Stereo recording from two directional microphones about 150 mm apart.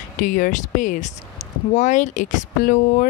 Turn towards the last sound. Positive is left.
turn(degrees=60)  # may be behind; listen again after turning